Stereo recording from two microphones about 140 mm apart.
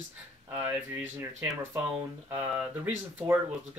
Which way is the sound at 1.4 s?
20° right (ahead or behind).